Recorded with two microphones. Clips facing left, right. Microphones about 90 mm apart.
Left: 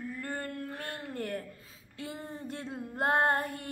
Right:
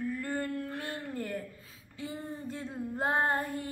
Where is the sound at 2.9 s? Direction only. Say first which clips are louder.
Left 2 dB; 60° left (ahead or behind).